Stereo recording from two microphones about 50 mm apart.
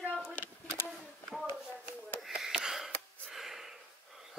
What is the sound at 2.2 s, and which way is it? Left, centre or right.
Wheeze, centre.